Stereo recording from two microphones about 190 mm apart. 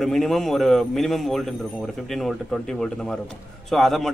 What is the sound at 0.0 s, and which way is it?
A man's voice, centre (ahead or behind).